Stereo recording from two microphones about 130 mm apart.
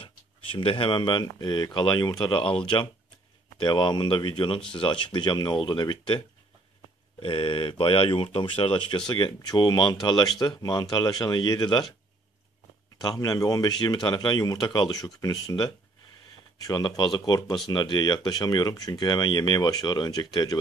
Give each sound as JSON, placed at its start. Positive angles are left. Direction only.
{"t": 0.0, "sound": "speech", "side_deg": 40}
{"t": 13.0, "sound": "speech", "side_deg": 30}